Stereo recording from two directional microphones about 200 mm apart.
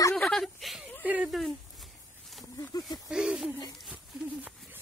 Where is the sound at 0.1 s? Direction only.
5° left (ahead or behind).